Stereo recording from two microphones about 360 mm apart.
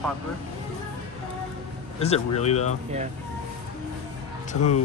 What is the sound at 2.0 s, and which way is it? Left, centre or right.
Speech, centre.